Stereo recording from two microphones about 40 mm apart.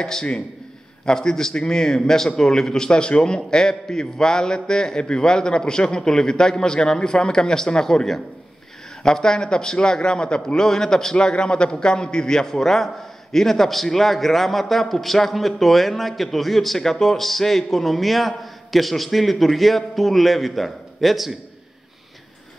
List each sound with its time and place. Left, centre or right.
0.0 s a man's voice: centre